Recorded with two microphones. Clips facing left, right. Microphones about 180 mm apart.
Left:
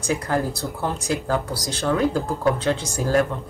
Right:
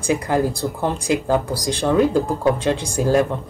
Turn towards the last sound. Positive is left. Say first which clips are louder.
# right 3 dB
turn(degrees=-15)  # may be behind; listen again after turning